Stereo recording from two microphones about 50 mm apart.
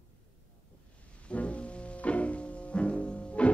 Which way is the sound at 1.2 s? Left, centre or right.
Left.